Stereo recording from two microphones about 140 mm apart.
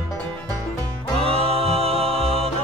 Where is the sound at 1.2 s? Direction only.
45° right (ahead or behind).